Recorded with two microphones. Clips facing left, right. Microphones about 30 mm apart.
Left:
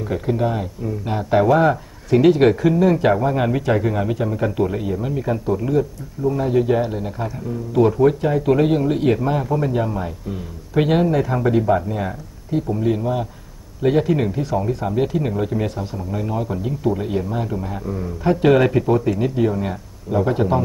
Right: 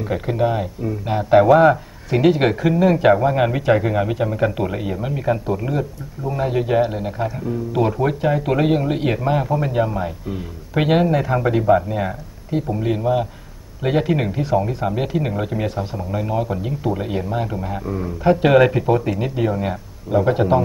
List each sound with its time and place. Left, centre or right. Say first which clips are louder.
0.1 s speech: right 1 dB; centre